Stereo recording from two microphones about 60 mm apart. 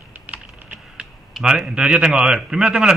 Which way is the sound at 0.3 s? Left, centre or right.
Right.